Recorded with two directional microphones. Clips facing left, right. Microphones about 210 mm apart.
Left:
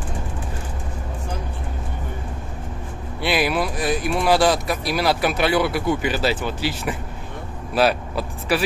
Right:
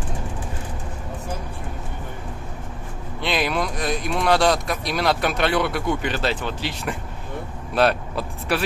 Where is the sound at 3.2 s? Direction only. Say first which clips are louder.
Left 2 dB; 10° left (ahead or behind).